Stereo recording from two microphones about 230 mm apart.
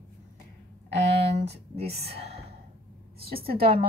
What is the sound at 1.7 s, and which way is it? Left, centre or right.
Speech, right.